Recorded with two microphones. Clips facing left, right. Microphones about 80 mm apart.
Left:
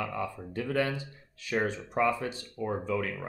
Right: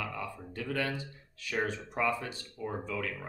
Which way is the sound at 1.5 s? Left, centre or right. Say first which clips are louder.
Left 4 dB; left.